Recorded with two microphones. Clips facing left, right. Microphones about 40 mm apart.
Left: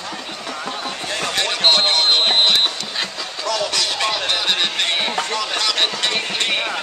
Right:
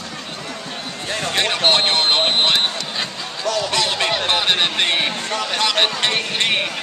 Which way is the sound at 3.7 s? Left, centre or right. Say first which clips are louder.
Right 2 dB; right.